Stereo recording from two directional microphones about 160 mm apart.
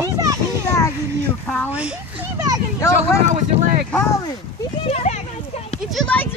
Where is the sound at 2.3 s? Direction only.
20° right (ahead or behind).